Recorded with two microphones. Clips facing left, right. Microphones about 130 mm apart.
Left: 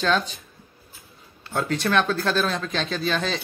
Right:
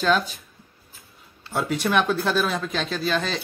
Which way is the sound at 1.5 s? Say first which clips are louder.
Even; 10° right (ahead or behind).